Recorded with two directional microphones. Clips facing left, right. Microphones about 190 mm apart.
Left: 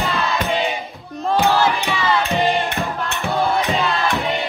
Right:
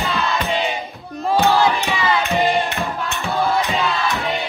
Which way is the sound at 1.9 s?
15° right (ahead or behind).